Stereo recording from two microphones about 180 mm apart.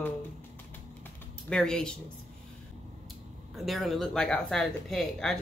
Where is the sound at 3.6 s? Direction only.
Centre (ahead or behind).